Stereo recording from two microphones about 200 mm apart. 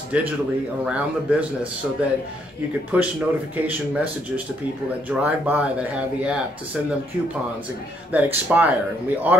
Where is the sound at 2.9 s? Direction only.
5° right (ahead or behind).